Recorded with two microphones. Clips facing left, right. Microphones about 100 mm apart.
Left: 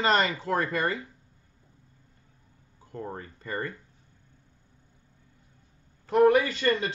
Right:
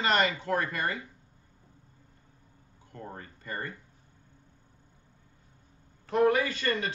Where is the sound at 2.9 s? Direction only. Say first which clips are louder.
Left 6 dB; 35° left (ahead or behind).